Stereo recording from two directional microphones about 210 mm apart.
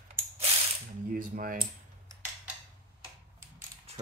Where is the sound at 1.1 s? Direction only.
40° right (ahead or behind).